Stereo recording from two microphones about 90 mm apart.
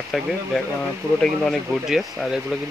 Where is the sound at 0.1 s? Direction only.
Centre (ahead or behind).